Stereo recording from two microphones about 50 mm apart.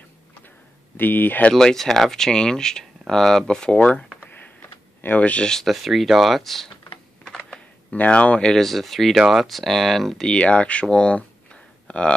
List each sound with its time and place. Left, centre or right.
0.9 s speech: left
1.5 s speech: centre
5.0 s speech: left
5.4 s speech: centre
5.7 s speech: centre
7.2 s a sound: centre
7.9 s speech: left
8.5 s speech: centre
10.2 s speech: left